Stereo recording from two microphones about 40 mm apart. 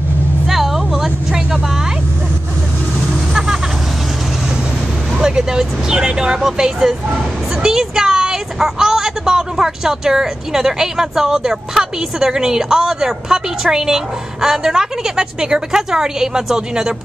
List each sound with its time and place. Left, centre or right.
0.5 s vehicle: centre
5.1 s speech: centre
7.6 s speech: centre